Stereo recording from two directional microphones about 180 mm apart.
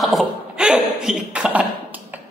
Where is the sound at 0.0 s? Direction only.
Centre (ahead or behind).